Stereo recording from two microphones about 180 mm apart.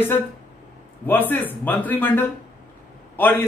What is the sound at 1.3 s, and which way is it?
A man's voice, 10° left (ahead or behind).